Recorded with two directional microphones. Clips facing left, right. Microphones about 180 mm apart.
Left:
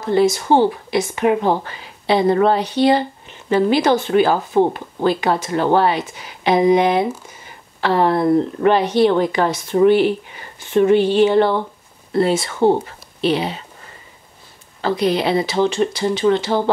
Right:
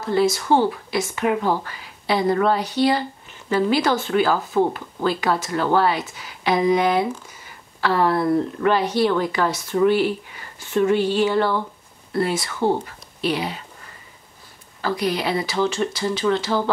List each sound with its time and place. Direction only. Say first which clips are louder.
0.0 s speech: left 4 dB; 20° left (ahead or behind)
14.8 s speech: left 5 dB; 25° left (ahead or behind)